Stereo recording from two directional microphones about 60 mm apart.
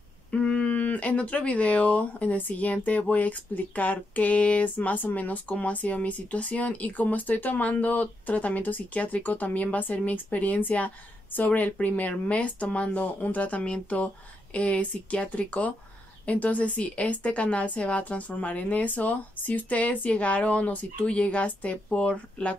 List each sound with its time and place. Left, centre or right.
0.3 s speech: centre